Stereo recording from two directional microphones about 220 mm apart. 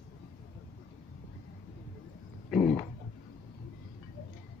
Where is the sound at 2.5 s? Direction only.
Centre (ahead or behind).